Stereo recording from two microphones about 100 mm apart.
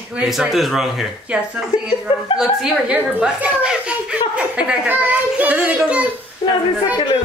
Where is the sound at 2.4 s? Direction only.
5° right (ahead or behind).